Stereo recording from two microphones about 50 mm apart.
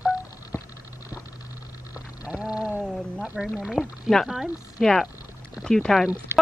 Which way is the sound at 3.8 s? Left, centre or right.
Centre.